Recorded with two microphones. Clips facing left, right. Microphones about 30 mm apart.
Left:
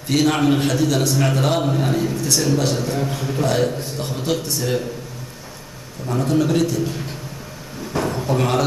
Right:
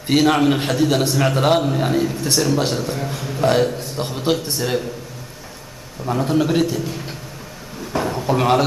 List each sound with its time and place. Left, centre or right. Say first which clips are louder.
0.0 s a man's voice: right 2 dB; right
4.0 s a man's voice: right 3 dB; right
6.0 s a man's voice: right 1 dB; centre
7.9 s drawer open or close: right 1 dB; centre
8.4 s a man's voice: right 4 dB; right